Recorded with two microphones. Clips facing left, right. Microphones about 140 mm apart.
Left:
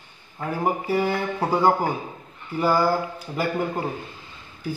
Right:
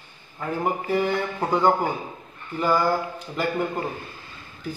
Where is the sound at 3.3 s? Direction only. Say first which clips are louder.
Even; 10° left (ahead or behind).